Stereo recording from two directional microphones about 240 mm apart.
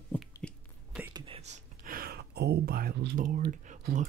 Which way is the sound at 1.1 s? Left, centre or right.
Right.